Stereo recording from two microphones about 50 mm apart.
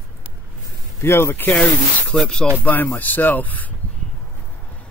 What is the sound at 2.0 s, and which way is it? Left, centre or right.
Speech, centre.